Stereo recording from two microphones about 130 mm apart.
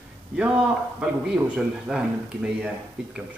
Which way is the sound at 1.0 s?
5° right (ahead or behind).